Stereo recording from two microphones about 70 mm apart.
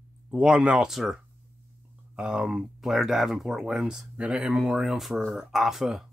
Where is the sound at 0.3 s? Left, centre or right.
Centre.